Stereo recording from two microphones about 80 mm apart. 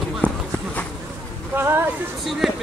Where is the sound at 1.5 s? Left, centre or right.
Right.